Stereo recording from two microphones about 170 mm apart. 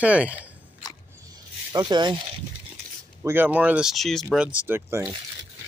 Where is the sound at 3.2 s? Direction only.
10° right (ahead or behind).